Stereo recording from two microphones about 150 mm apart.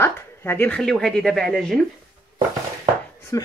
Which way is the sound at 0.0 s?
15° left (ahead or behind).